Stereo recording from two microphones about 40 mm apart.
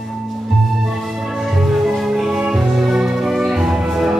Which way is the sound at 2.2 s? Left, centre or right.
Centre.